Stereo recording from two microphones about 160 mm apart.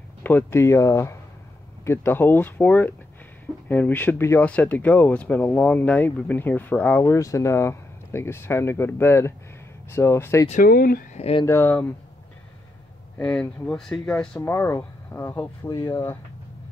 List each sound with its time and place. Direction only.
0.2 s speech: 10° left (ahead or behind)
10.5 s speech: 65° left (ahead or behind)
11.1 s speech: 40° left (ahead or behind)
11.4 s speech: 15° left (ahead or behind)
13.2 s speech: 10° left (ahead or behind)
14.4 s speech: 15° left (ahead or behind)